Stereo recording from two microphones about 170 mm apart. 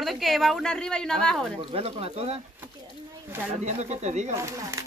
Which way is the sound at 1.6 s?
35° right (ahead or behind).